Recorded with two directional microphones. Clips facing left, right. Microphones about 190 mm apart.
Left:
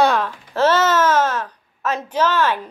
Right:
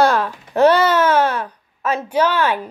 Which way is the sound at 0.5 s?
15° right (ahead or behind).